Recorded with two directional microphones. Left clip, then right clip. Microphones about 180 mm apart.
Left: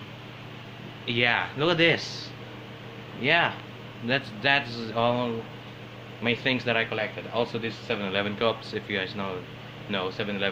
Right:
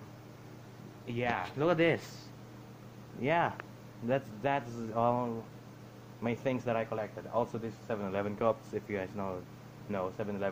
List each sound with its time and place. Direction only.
1.0 s speech: 10° right (ahead or behind)
1.6 s speech: 35° right (ahead or behind)
3.2 s speech: 35° right (ahead or behind)
4.1 s a man's voice: 25° right (ahead or behind)
7.9 s a man's voice: 25° right (ahead or behind)